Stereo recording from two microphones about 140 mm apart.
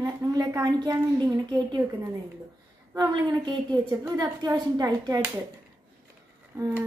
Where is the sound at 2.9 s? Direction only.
30° right (ahead or behind).